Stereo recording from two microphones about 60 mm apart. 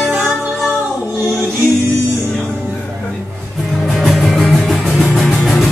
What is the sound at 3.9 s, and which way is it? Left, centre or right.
Music, centre.